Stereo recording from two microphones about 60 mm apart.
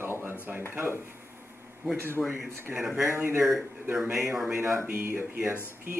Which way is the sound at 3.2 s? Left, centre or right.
Right.